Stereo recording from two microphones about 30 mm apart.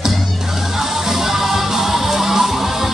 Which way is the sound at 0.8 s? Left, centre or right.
Centre.